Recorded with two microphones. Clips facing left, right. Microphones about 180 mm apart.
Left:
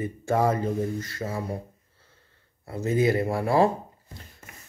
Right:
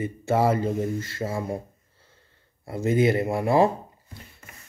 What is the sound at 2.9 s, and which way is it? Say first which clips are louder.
Speech: right 2 dB; 25° right (ahead or behind).